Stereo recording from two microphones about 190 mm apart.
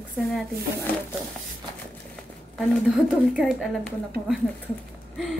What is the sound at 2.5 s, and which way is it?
Speech, centre (ahead or behind).